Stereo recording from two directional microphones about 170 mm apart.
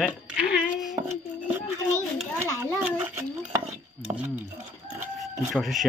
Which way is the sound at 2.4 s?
15° left (ahead or behind).